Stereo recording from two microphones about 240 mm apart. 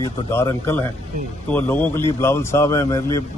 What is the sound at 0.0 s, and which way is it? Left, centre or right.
A man's voice, centre.